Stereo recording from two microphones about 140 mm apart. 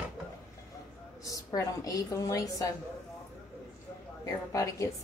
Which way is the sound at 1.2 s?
25° left (ahead or behind).